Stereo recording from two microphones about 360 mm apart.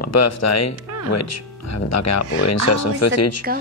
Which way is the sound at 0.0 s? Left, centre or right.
Left.